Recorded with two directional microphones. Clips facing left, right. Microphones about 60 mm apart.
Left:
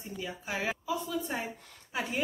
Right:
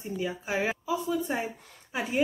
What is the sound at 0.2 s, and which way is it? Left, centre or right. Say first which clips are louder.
Speech: right 5 dB; centre.